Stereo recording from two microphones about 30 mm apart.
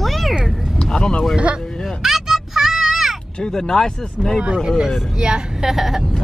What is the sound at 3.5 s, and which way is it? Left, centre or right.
Speech, left.